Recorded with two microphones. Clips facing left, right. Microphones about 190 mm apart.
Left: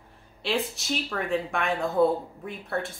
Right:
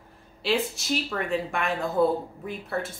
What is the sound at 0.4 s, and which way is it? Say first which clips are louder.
Speech: right 2 dB; centre (ahead or behind).